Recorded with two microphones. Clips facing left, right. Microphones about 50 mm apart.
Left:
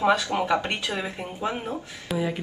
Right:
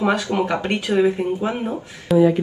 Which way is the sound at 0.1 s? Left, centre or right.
Right.